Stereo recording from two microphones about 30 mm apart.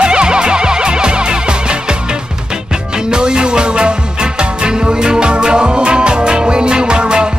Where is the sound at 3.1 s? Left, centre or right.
Right.